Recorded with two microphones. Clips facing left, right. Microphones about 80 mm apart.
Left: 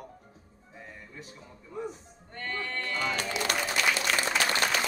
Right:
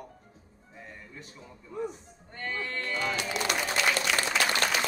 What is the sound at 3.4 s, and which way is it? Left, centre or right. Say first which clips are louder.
Applause: even; left.